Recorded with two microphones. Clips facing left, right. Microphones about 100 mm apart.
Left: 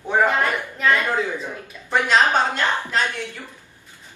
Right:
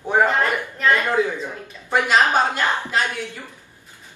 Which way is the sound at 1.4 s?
10° right (ahead or behind).